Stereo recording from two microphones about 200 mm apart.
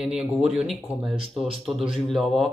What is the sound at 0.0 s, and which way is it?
Speech, 5° right (ahead or behind).